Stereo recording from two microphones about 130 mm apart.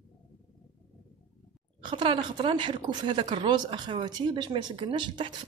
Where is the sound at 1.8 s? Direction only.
40° right (ahead or behind).